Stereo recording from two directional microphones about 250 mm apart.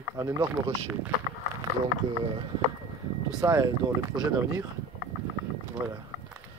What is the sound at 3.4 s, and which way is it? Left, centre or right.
Speech, centre.